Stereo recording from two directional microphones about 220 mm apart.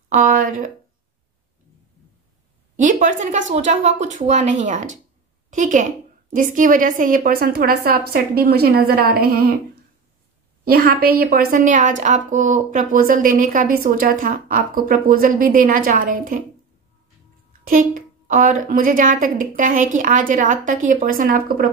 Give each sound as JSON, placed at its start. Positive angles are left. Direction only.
{"t": 0.3, "sound": "speech", "side_deg": -40}
{"t": 2.7, "sound": "a woman's voice", "side_deg": -35}
{"t": 10.6, "sound": "a woman's voice", "side_deg": -45}
{"t": 17.6, "sound": "a woman's voice", "side_deg": -40}